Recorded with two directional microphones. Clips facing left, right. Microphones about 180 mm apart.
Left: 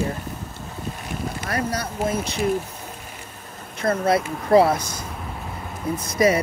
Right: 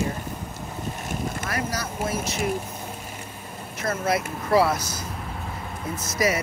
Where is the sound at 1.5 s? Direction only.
30° left (ahead or behind).